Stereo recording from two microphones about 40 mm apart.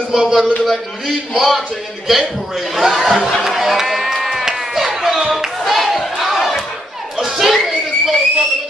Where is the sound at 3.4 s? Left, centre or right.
Centre.